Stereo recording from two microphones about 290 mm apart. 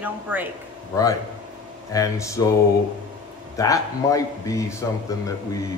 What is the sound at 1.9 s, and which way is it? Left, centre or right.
Speech, centre.